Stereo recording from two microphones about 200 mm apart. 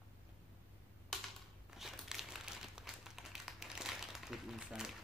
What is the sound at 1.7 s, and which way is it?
Crumpling, centre (ahead or behind).